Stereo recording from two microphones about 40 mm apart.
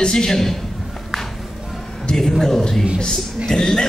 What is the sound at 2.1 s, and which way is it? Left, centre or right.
A man's voice, centre.